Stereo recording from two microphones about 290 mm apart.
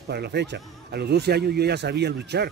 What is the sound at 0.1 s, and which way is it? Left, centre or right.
Speech, right.